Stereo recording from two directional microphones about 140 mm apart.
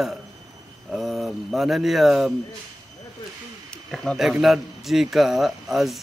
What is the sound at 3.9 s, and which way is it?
A man's voice, centre (ahead or behind).